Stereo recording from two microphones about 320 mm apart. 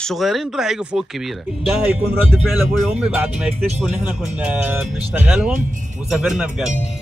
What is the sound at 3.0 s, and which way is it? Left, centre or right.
A man's voice, centre.